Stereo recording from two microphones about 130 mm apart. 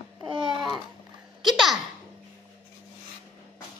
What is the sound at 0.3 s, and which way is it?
Babbling, 35° right (ahead or behind).